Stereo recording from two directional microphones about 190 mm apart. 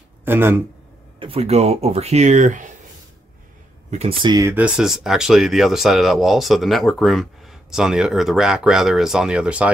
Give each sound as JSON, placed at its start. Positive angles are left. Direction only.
{"t": 0.2, "sound": "speech", "side_deg": -10}
{"t": 1.2, "sound": "speech", "side_deg": -30}
{"t": 3.9, "sound": "speech", "side_deg": -30}